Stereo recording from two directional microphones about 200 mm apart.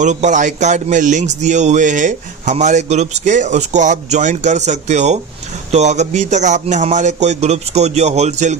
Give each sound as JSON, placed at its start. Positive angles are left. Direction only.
{"t": 0.0, "sound": "speech", "side_deg": -35}